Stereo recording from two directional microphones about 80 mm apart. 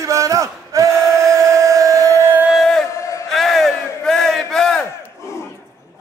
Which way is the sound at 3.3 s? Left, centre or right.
Centre.